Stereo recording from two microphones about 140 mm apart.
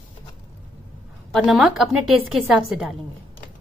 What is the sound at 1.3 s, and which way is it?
A woman's voice, centre (ahead or behind).